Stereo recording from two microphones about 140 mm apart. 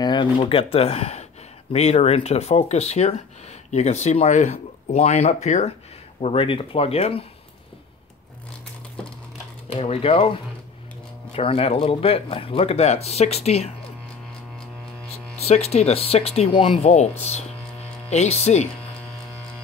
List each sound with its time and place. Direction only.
0.0 s speech: 35° left (ahead or behind); by 5.8 s 55° left (ahead or behind)
6.2 s speech: 40° left (ahead or behind)
9.7 s speech: 45° left (ahead or behind)
15.3 s speech: 50° left (ahead or behind)
16.8 s speech: 50° left (ahead or behind)